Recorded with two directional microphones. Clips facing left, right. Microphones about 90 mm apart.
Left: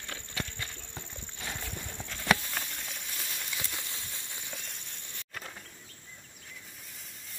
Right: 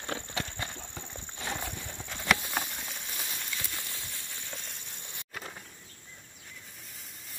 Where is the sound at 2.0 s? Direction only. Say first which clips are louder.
Left 1 dB; 15° right (ahead or behind).